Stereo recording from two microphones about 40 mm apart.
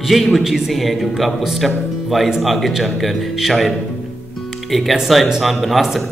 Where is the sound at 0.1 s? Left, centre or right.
Centre.